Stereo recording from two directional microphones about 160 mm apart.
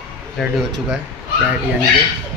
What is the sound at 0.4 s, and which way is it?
Speech, centre (ahead or behind).